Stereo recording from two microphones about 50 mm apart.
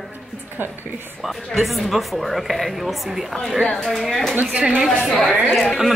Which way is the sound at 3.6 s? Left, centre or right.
Centre.